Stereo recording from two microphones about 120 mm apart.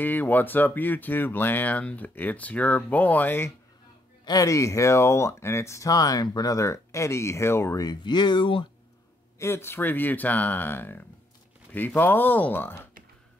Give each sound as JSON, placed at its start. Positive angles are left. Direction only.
{"t": 0.0, "sound": "speech", "side_deg": 15}
{"t": 4.2, "sound": "speech", "side_deg": 30}
{"t": 9.4, "sound": "speech", "side_deg": 20}